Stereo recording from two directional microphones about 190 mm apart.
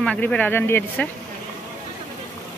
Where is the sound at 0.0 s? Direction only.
5° left (ahead or behind).